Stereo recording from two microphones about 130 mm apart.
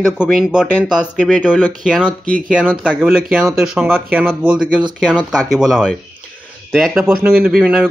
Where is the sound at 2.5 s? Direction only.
10° right (ahead or behind).